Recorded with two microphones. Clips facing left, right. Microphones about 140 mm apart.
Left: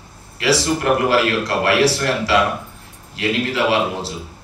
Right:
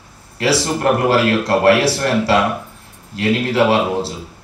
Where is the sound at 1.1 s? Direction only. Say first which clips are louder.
Right 3 dB; 55° right (ahead or behind).